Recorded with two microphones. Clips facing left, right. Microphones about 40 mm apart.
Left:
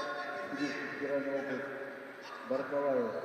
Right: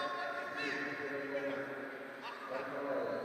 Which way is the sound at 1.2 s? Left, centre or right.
Centre.